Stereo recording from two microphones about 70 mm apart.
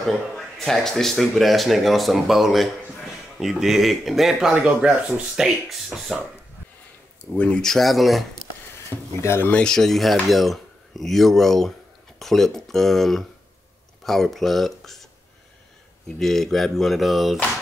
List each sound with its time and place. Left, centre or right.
0.0 s speech: centre
7.3 s speech: centre
9.2 s speech: left
9.5 s speech: centre
10.2 s dishes: centre
12.2 s speech: centre
16.1 s speech: centre